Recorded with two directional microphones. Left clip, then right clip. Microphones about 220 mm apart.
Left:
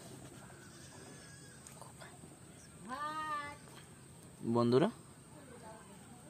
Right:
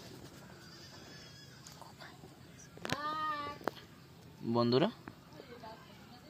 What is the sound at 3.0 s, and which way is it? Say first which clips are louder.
Child singing: right 1 dB; 55° right (ahead or behind).